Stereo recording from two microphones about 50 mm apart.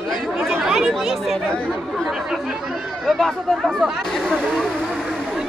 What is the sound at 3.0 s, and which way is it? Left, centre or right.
Speech, centre.